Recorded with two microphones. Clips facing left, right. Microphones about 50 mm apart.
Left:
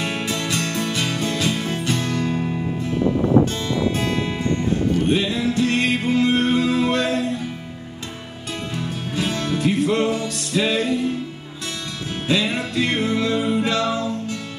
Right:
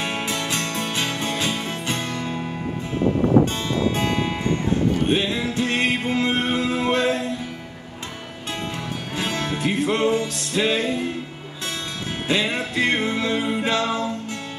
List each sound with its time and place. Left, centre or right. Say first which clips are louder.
0.0 s music: left 1 dB; right
3.9 s music: even; right
8.7 s music: left 2 dB; right
12.3 s music: left 1 dB; right